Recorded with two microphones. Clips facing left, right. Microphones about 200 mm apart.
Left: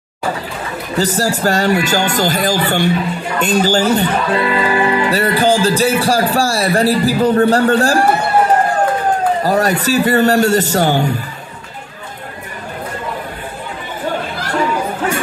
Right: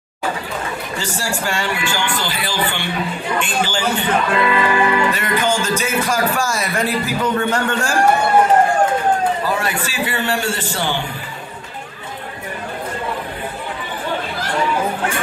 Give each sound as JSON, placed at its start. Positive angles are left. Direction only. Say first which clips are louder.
{"t": 0.9, "sound": "speech", "louder": "left 11 dB", "side_deg": 40}
{"t": 9.4, "sound": "speech", "louder": "left 6 dB", "side_deg": 40}